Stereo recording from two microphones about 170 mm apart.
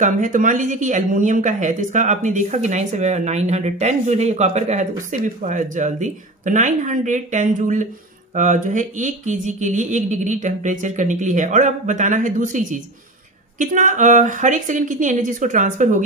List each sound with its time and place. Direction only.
0.0 s speech: 50° right (ahead or behind)